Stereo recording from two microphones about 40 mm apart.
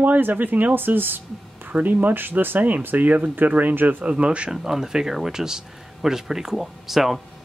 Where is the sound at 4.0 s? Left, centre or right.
Right.